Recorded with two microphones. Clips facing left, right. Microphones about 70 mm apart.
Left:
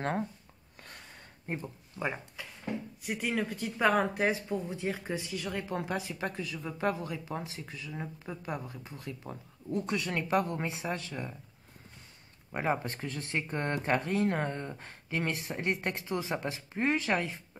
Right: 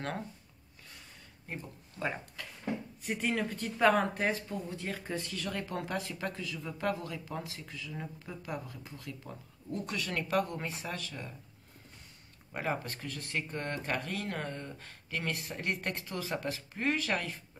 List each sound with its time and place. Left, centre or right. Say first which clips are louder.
1.5 s speech: left 5 dB; left
2.4 s a sound: left 1 dB; centre
3.0 s speech: left 1 dB; centre
8.6 s speech: left 3 dB; left
9.8 s speech: left 2 dB; centre
12.5 s speech: left 4 dB; left